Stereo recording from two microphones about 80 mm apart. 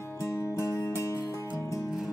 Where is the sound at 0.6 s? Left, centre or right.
Left.